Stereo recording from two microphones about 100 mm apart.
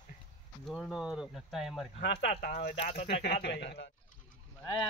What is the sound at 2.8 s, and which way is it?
Speech, 85° left.